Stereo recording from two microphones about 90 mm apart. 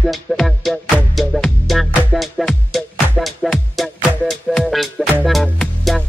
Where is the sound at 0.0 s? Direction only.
Centre (ahead or behind).